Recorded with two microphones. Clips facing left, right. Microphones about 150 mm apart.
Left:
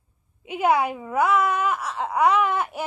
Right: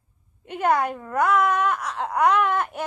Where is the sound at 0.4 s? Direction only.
5° left (ahead or behind).